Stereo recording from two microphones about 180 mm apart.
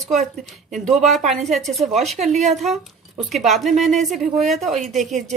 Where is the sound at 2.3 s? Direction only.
40° right (ahead or behind).